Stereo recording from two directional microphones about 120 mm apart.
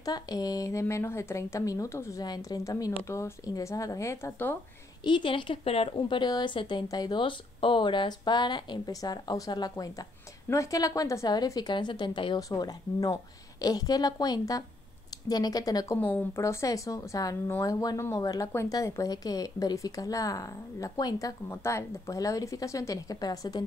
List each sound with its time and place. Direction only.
0.0 s a woman's voice: 35° left (ahead or behind)
5.0 s a woman's voice: 40° left (ahead or behind)
12.4 s speech: 30° left (ahead or behind)
16.0 s a woman's voice: 15° left (ahead or behind); by 23.6 s 30° left (ahead or behind)